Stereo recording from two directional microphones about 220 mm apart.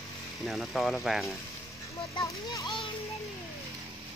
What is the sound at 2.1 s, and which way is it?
Speech, 15° left (ahead or behind).